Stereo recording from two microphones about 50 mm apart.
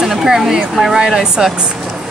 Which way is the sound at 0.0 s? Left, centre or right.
Centre.